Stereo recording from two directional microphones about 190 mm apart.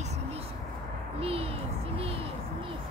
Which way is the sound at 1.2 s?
30° right (ahead or behind).